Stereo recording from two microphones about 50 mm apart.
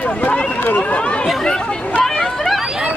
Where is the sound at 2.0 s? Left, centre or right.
Centre.